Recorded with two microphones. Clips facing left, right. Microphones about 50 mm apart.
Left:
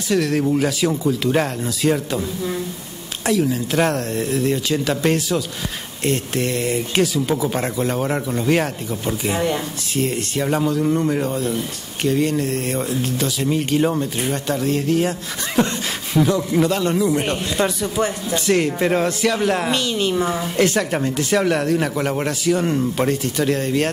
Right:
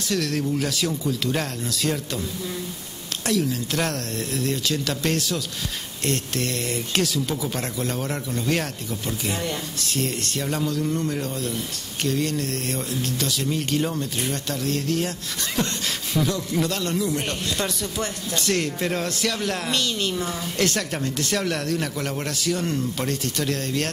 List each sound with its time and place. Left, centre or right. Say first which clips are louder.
0.1 s speech: left 7 dB; centre
3.3 s speech: left 5 dB; centre